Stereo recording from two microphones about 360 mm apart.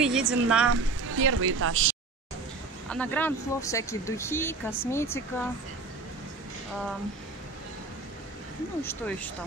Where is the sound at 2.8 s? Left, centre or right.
Centre.